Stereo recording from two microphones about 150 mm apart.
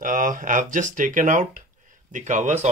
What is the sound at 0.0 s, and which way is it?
Speech, 65° right (ahead or behind).